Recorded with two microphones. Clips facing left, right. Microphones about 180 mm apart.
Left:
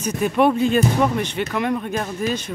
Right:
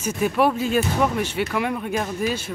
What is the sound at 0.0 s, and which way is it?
Speech, 5° right (ahead or behind).